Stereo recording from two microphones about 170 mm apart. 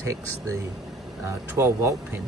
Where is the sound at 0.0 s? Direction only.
15° right (ahead or behind).